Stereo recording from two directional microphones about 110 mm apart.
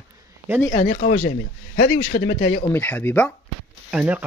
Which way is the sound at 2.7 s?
15° left (ahead or behind).